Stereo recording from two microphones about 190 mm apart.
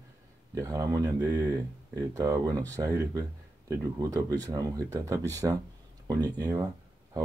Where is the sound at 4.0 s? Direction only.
15° right (ahead or behind).